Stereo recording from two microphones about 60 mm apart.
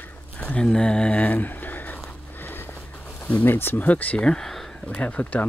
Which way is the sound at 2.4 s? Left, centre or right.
Left.